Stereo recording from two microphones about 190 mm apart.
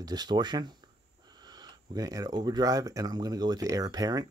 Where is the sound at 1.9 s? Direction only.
20° right (ahead or behind).